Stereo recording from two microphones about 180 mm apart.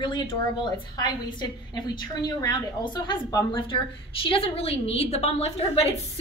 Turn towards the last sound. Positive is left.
turn(degrees=35)  # may be behind; listen again after turning